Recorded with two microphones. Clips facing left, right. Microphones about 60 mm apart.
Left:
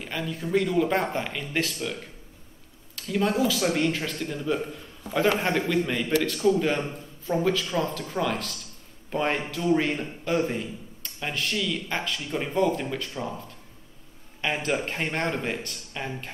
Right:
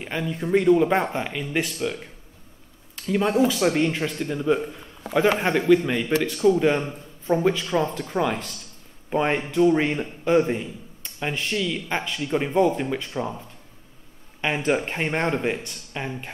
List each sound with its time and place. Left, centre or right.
0.3 s a man's voice: right
1.1 s a man's voice: centre
3.1 s a man's voice: centre
7.9 s a man's voice: centre
14.4 s a man's voice: centre